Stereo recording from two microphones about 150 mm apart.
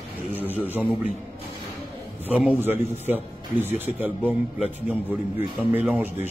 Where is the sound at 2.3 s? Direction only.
10° right (ahead or behind).